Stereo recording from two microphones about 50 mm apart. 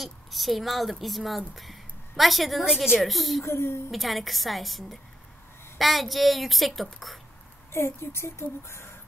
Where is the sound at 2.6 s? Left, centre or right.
Centre.